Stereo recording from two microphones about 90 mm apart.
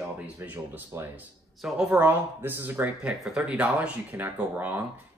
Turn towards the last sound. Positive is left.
turn(degrees=-20)  # may be behind; listen again after turning